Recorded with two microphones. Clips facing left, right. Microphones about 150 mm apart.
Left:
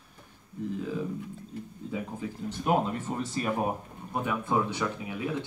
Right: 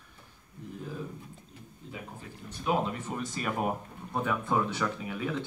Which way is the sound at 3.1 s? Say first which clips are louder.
Left 3 dB; 30° left (ahead or behind).